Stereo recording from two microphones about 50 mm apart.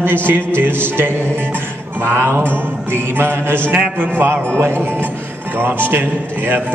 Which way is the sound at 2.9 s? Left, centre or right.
Right.